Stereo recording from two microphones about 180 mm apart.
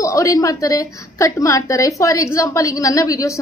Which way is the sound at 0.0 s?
20° left (ahead or behind).